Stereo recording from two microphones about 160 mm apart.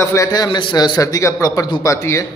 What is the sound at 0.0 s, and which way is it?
A man's voice, 20° left (ahead or behind).